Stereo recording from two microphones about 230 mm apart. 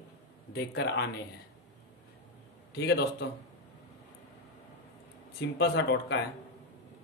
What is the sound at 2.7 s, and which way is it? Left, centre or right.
Speech, left.